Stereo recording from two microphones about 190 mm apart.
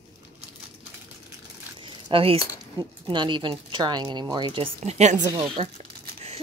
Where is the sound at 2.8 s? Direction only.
25° right (ahead or behind).